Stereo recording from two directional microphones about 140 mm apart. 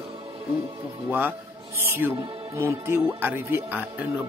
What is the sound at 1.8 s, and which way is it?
Speech, 15° right (ahead or behind).